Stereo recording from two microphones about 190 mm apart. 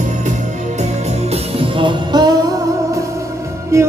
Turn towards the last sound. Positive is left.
turn(degrees=-15)  # may be behind; listen again after turning